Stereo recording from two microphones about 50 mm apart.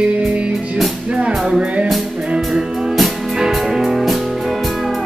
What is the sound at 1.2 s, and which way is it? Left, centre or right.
Music, centre.